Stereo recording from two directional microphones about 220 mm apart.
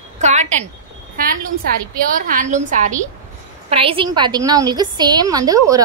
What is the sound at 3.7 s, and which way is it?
A woman's voice, 25° right (ahead or behind).